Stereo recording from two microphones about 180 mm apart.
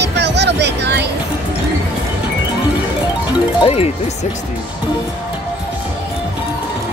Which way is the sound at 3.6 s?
35° left (ahead or behind).